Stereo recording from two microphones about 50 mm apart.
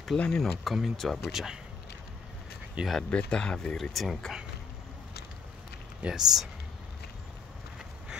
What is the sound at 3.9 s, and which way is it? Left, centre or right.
Speech, centre.